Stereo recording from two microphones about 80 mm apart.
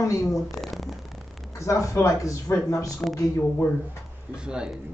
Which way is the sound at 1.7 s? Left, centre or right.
Left.